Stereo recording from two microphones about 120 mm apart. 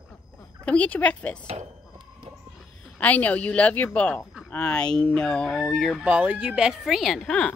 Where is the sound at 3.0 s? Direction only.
10° left (ahead or behind).